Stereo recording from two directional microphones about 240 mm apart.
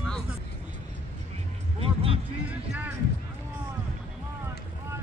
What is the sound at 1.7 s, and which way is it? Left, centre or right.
Music, right.